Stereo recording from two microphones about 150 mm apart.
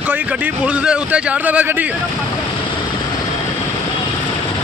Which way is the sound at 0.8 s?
10° right (ahead or behind).